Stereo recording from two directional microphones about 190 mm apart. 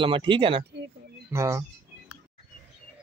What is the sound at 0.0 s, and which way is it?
Speech, 25° right (ahead or behind).